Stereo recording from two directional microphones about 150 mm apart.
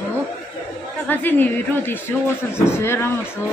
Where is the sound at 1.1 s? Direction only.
10° left (ahead or behind).